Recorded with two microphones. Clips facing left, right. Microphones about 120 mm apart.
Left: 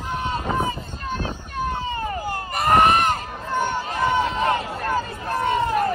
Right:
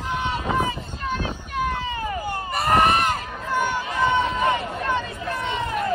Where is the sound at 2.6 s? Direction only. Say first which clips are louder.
Left 2 dB; 40° left (ahead or behind).